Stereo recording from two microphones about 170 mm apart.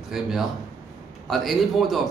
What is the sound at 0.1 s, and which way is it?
A man's voice, centre (ahead or behind).